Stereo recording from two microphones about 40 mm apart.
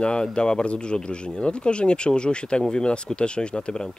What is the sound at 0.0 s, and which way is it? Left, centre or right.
Speech, left.